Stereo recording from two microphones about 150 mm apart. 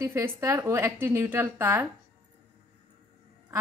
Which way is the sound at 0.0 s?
20° right (ahead or behind).